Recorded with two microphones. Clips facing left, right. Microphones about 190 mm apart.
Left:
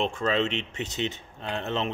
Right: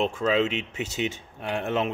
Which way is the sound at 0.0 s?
5° right (ahead or behind).